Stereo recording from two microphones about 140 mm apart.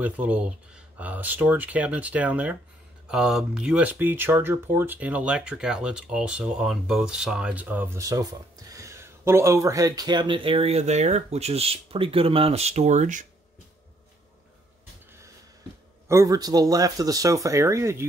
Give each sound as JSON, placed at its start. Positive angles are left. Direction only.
{"t": 0.0, "sound": "speech", "side_deg": -10}
{"t": 16.1, "sound": "speech", "side_deg": -20}